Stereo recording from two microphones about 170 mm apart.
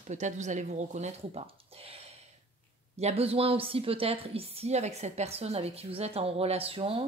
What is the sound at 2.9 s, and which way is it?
A woman's voice, 35° right (ahead or behind).